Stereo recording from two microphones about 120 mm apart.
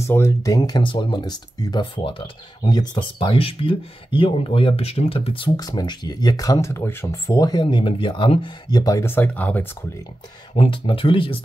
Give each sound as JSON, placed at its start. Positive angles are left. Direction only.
{"t": 0.0, "sound": "speech", "side_deg": 25}
{"t": 5.6, "sound": "speech", "side_deg": 35}
{"t": 7.6, "sound": "speech", "side_deg": 45}
{"t": 10.5, "sound": "speech", "side_deg": 50}